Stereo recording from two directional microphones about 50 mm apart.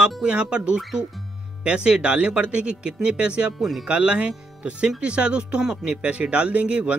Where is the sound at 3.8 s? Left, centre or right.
Right.